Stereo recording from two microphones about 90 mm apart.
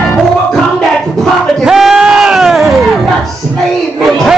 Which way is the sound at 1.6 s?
5° right (ahead or behind).